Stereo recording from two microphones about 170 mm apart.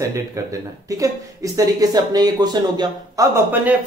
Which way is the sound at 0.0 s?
20° right (ahead or behind).